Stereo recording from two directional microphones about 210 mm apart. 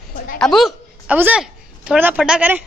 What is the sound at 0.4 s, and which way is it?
A woman's voice, centre (ahead or behind).